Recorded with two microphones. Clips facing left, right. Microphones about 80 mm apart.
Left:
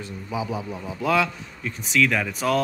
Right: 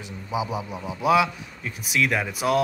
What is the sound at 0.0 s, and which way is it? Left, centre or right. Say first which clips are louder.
A man's voice: right 1 dB; centre.